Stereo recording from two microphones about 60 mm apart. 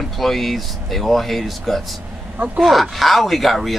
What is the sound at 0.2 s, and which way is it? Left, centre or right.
Speech, centre.